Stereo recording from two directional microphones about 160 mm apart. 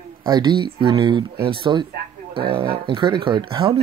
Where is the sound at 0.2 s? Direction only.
25° right (ahead or behind).